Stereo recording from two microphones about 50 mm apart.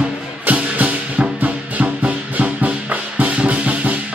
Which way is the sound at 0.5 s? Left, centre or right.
Right.